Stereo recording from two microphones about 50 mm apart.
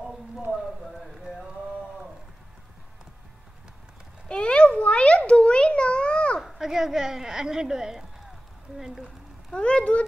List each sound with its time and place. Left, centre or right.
4.3 s a sound: centre
6.4 s a woman's voice: centre
9.6 s speech: left